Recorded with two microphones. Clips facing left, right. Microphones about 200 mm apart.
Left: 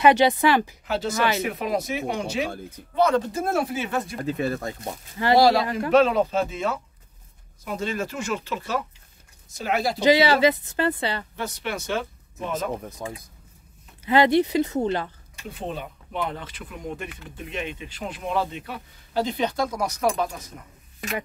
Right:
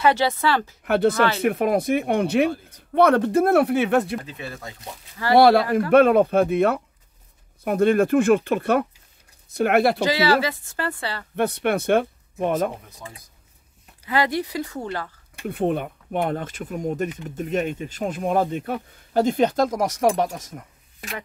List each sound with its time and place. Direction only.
0.0 s speech: 15° left (ahead or behind)
0.8 s speech: 60° right (ahead or behind)
4.2 s speech: 45° left (ahead or behind)
5.3 s speech: 60° right (ahead or behind)
10.0 s speech: 20° left (ahead or behind)
11.3 s speech: 55° right (ahead or behind)
13.0 s speech: 50° left (ahead or behind)
14.0 s speech: 25° left (ahead or behind)
15.4 s speech: 55° right (ahead or behind)
20.2 s speech: 90° right